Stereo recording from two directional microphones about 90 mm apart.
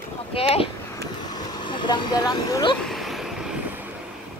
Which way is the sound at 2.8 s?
Centre (ahead or behind).